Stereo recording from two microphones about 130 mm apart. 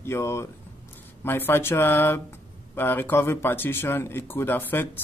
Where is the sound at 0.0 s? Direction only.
20° left (ahead or behind).